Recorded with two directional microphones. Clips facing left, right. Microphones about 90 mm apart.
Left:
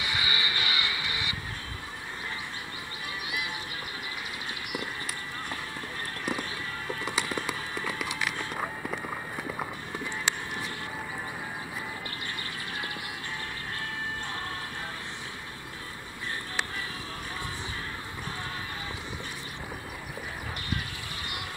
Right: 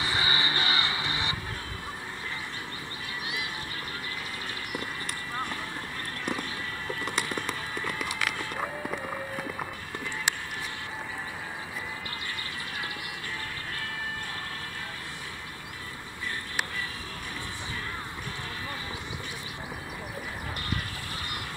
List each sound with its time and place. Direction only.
0.0 s music: 35° right (ahead or behind)
6.3 s a sound: centre (ahead or behind)
7.4 s clip-clop: centre (ahead or behind)